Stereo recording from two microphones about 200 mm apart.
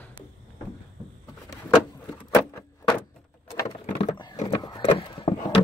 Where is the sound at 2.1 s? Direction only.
15° left (ahead or behind).